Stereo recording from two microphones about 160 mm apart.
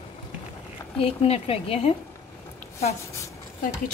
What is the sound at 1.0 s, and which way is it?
Speech, 40° left (ahead or behind).